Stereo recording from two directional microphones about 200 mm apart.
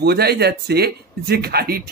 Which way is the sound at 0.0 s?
50° right (ahead or behind).